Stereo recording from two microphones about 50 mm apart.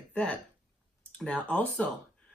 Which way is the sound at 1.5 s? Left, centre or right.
Left.